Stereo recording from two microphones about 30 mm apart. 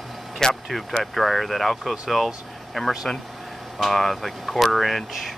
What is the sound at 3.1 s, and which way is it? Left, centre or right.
Speech, centre.